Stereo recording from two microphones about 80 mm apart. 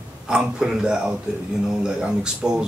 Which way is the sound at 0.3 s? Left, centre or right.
Centre.